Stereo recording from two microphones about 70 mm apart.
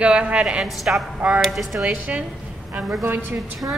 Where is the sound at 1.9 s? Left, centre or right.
Right.